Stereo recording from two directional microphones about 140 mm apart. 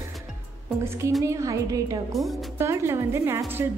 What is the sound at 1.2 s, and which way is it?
A woman's voice, 20° right (ahead or behind).